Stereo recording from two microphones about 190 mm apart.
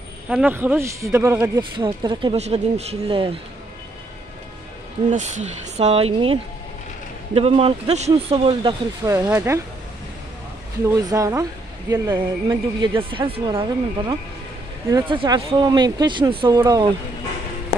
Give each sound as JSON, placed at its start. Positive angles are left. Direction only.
{"t": 0.3, "sound": "speech", "side_deg": -10}
{"t": 2.3, "sound": "speech", "side_deg": -35}
{"t": 5.1, "sound": "speech", "side_deg": -35}
{"t": 8.5, "sound": "speech", "side_deg": -20}
{"t": 10.9, "sound": "speech", "side_deg": -20}